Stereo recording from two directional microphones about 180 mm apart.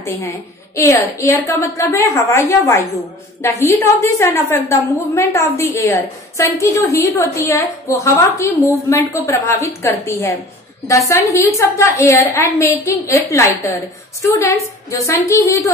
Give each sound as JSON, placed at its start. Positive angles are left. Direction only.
{"t": 0.0, "sound": "a woman's voice", "side_deg": 15}